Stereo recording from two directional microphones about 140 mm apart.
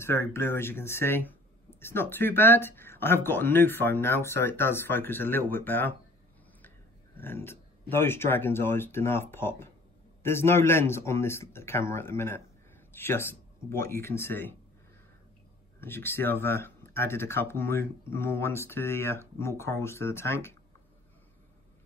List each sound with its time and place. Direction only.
0.0 s speech: 20° left (ahead or behind)
7.2 s speech: 15° left (ahead or behind)
15.8 s speech: 15° left (ahead or behind)